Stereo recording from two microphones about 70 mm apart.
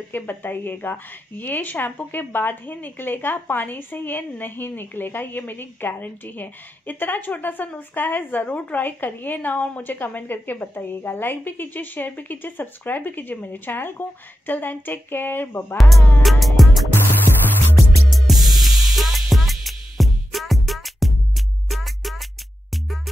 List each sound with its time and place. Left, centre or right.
0.1 s speech: left
15.8 s music: centre
18.1 s music: centre